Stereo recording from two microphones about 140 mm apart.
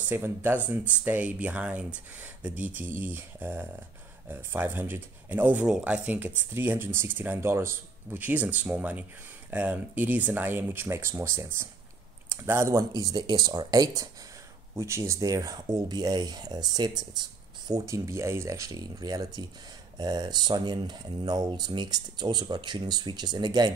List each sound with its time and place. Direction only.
0.1 s speech: 15° right (ahead or behind); by 23.7 s 30° right (ahead or behind)